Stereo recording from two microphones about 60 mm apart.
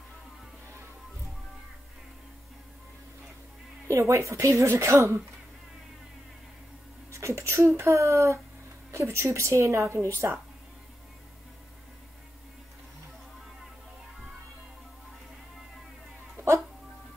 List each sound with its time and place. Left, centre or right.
3.8 s speech: right
7.1 s speech: right
16.4 s music: right